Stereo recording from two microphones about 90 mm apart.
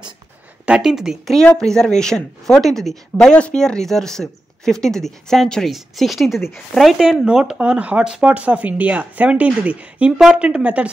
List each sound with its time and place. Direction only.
0.7 s a woman's voice: 5° right (ahead or behind)